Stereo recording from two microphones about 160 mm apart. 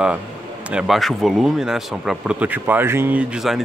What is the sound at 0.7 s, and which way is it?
Speech, 5° right (ahead or behind).